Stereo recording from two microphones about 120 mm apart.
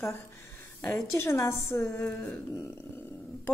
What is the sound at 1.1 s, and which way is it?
A woman's voice, 20° left (ahead or behind).